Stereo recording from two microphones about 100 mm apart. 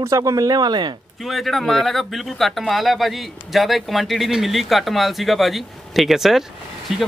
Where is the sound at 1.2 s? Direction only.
Centre (ahead or behind).